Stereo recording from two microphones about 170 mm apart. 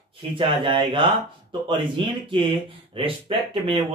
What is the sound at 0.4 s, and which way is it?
Speech, 30° right (ahead or behind).